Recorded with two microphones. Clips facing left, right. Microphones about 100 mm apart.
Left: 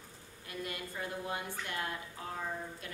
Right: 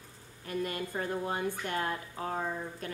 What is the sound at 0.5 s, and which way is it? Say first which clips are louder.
A woman's voice: right 7 dB; 45° right (ahead or behind).